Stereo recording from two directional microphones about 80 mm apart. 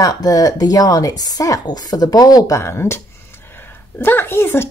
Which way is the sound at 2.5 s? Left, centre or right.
Left.